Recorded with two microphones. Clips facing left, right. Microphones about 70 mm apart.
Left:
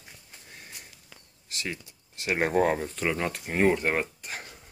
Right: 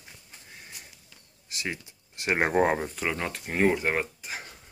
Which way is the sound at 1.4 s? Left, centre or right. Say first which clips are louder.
Right 1 dB; centre.